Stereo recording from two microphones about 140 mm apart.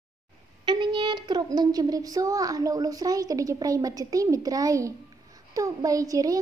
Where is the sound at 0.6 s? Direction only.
35° right (ahead or behind).